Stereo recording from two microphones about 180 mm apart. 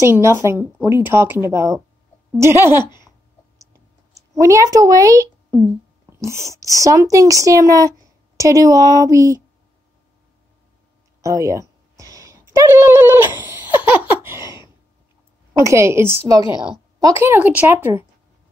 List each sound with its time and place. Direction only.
0.0 s speech: 15° right (ahead or behind)
2.7 s speech: 25° left (ahead or behind)
4.4 s speech: 15° right (ahead or behind)
11.1 s a sound: 15° right (ahead or behind)
15.5 s speech: 15° right (ahead or behind)